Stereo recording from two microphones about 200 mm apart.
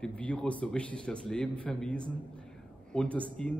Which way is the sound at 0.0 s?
5° left (ahead or behind).